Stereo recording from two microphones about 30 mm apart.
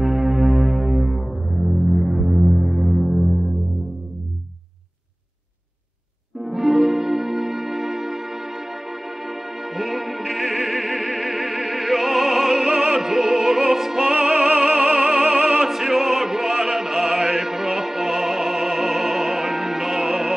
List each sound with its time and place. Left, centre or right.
0.0 s music: centre
0.5 s music: centre
6.3 s music: centre
14.3 s music: right
15.2 s opera: right
15.6 s opera: centre